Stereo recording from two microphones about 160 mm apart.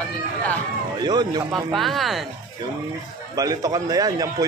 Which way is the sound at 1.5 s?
Centre (ahead or behind).